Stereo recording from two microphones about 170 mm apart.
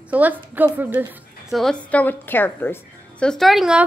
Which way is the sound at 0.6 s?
10° right (ahead or behind).